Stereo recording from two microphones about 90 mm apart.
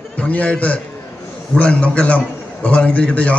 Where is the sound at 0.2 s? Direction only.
15° left (ahead or behind).